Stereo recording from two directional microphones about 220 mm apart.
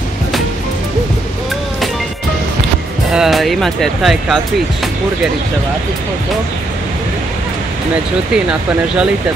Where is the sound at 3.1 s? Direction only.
Centre (ahead or behind).